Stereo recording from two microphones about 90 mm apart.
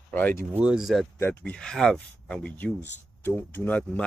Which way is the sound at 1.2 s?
25° left (ahead or behind).